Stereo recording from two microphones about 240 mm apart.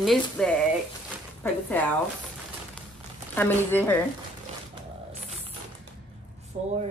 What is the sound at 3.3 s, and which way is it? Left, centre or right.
Speech, centre.